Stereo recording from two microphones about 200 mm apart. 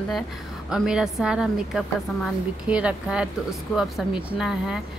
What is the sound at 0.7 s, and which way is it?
Speech, 5° right (ahead or behind).